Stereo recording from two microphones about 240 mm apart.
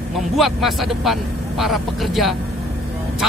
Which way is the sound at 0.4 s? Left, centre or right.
Centre.